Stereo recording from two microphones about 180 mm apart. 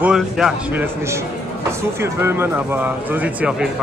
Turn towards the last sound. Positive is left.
turn(degrees=-5)  # may be behind; listen again after turning